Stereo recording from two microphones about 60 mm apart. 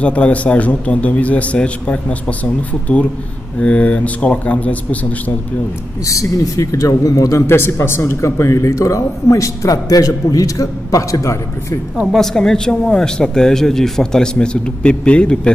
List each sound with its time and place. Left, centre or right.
0.0 s a man's voice: left
6.0 s a man's voice: left
7.4 s a man's voice: left
12.1 s speech: centre